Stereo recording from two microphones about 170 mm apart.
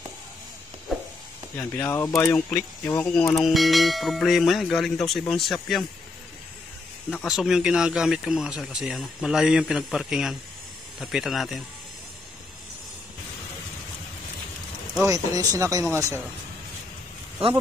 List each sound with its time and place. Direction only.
0.9 s a sound: centre (ahead or behind)
1.6 s speech: 20° left (ahead or behind)
3.3 s speech: centre (ahead or behind)
7.2 s speech: 5° right (ahead or behind)
15.0 s speech: 20° right (ahead or behind)